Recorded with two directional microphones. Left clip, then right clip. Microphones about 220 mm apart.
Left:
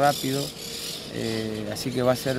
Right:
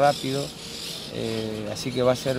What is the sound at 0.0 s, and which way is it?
Speech, 10° left (ahead or behind).